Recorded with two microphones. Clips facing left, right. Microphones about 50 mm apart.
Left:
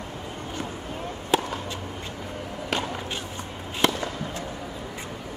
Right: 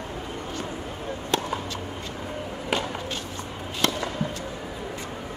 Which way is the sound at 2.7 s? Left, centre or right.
Centre.